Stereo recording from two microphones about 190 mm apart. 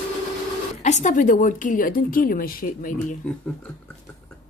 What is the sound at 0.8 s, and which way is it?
A woman's voice, 40° left (ahead or behind).